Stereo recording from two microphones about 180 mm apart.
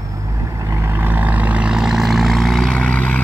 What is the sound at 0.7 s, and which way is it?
Vehicle, 10° right (ahead or behind).